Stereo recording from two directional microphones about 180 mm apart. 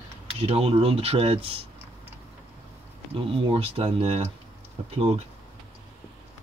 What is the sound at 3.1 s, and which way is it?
Speech, 30° right (ahead or behind).